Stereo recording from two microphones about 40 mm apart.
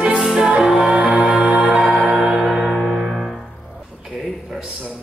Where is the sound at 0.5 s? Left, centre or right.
Right.